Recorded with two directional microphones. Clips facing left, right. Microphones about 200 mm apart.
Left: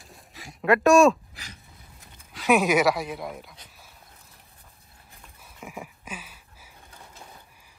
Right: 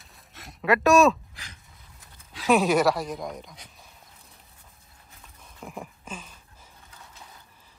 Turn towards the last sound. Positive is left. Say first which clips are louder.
# even
turn(degrees=10)  # may be behind; listen again after turning